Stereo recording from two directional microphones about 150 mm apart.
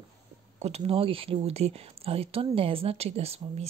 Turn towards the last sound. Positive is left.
turn(degrees=-45)  # may be behind; listen again after turning